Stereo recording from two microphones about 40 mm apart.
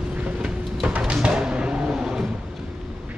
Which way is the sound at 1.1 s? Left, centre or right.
Right.